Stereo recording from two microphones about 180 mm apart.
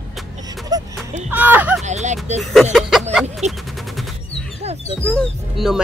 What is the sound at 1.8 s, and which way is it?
Speech, 40° right (ahead or behind).